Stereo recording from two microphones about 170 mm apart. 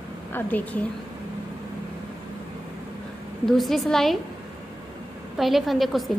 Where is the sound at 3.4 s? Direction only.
Centre (ahead or behind).